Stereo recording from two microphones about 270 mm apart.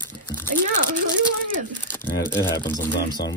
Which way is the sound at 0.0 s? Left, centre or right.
Centre.